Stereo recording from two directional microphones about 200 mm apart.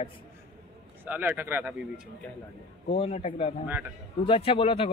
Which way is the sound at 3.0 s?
30° left (ahead or behind).